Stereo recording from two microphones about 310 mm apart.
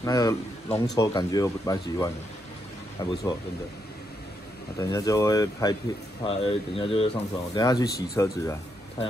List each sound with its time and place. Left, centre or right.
0.0 s speech: centre
4.7 s speech: centre